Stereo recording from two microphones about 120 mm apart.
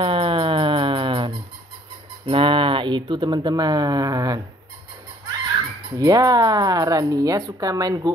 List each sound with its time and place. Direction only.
0.0 s music: 45° right (ahead or behind)
2.2 s speech: 45° right (ahead or behind); by 4.4 s 30° right (ahead or behind)
5.9 s speech: 30° right (ahead or behind)